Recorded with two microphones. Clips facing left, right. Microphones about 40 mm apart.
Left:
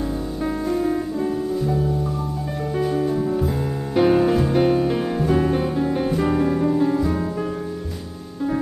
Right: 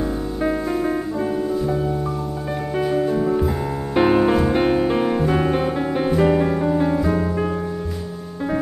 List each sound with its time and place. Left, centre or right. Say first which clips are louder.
0.4 s music: right 1 dB; right